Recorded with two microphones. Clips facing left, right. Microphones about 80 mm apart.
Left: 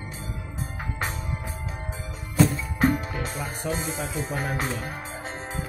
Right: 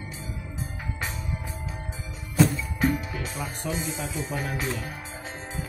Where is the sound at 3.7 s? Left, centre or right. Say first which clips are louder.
Left 2 dB; left.